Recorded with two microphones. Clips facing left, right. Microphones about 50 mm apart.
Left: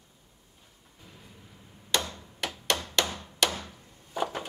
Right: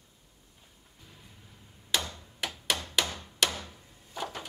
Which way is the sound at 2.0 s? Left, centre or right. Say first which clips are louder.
Left 2 dB; centre.